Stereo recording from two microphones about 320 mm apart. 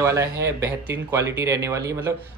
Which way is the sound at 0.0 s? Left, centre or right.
Centre.